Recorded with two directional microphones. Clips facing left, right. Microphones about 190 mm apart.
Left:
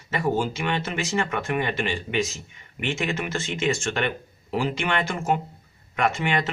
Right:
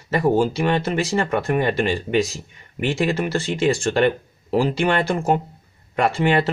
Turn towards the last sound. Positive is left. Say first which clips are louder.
# right 6 dB
turn(degrees=-35)  # may be behind; listen again after turning